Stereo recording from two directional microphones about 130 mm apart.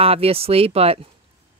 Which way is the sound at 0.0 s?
50° right (ahead or behind).